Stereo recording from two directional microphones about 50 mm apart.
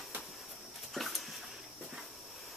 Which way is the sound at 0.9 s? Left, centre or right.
Centre.